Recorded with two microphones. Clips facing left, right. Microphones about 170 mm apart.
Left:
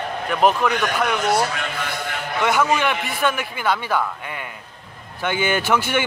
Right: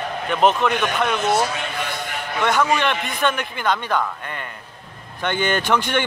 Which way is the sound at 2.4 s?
10° left (ahead or behind).